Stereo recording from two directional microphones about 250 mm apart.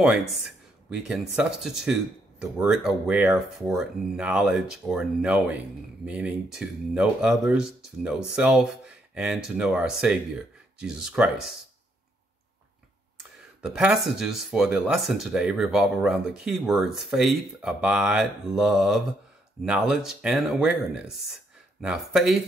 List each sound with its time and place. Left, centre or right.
0.0 s speech: centre
13.6 s speech: centre